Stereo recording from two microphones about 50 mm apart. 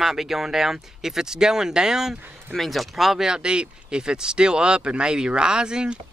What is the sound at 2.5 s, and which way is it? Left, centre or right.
Speech, centre.